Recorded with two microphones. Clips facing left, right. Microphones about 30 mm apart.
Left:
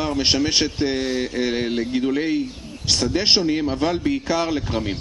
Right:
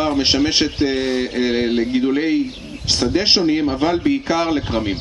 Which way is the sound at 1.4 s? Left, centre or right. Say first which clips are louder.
Right 6 dB; centre.